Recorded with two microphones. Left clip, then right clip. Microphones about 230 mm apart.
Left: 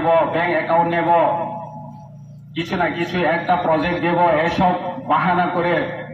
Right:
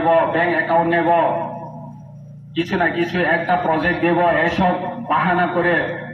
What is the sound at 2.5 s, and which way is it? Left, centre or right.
A man's voice, left.